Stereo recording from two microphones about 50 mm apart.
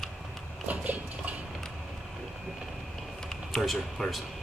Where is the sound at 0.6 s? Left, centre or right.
Right.